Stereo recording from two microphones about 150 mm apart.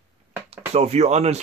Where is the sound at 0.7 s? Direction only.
45° right (ahead or behind).